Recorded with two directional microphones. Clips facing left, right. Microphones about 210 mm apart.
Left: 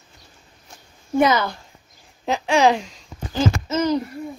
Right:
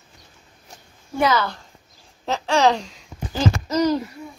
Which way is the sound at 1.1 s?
20° left (ahead or behind).